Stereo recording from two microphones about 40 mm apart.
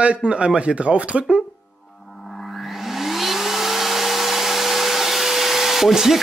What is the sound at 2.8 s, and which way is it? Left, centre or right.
Hair dryer, centre.